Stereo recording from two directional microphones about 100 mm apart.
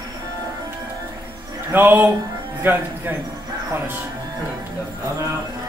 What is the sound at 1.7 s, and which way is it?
Speech, 20° right (ahead or behind).